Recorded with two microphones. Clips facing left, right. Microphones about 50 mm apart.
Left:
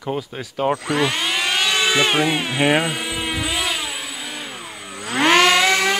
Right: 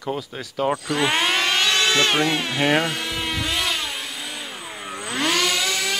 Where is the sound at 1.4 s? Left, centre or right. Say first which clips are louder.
Even; centre.